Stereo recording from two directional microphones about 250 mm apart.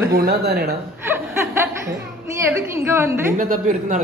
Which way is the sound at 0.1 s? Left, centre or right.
Right.